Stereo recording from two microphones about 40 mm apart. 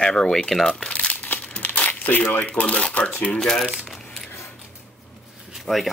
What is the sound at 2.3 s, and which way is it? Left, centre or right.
Speech, left.